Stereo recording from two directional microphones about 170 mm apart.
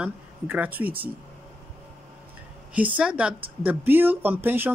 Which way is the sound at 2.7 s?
10° right (ahead or behind).